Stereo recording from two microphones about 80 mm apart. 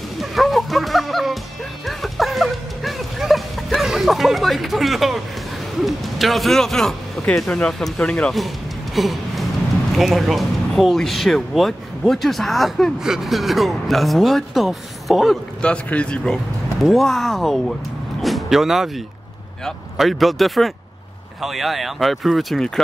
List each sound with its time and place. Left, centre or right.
0.2 s music: centre
5.9 s speech: centre
8.9 s gasp: centre
9.9 s speech: centre
15.6 s speech: centre
16.8 s speech: centre